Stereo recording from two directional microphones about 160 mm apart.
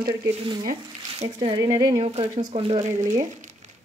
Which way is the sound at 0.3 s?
35° right (ahead or behind).